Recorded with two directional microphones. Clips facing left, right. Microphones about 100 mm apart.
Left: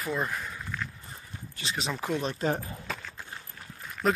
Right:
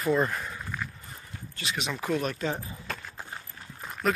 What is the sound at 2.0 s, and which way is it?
Speech, 20° left (ahead or behind).